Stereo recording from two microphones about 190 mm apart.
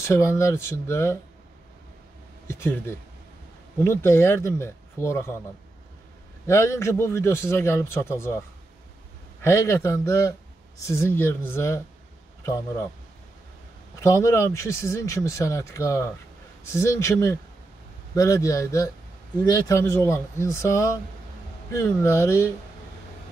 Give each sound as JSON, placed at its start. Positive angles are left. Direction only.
{"t": 0.0, "sound": "a man's voice", "side_deg": 15}
{"t": 2.4, "sound": "speech", "side_deg": 15}
{"t": 3.8, "sound": "a man's voice", "side_deg": 15}
{"t": 6.4, "sound": "a man's voice", "side_deg": 15}
{"t": 14.0, "sound": "a man's voice", "side_deg": 15}